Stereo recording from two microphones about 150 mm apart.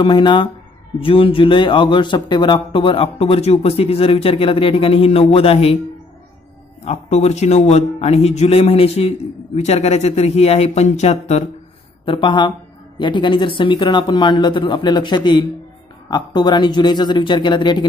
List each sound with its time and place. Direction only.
0.0 s speech: 30° left (ahead or behind)
6.8 s a man's voice: 45° left (ahead or behind)
12.0 s speech: 35° left (ahead or behind)